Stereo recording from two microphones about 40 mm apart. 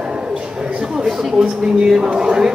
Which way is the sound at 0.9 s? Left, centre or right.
Centre.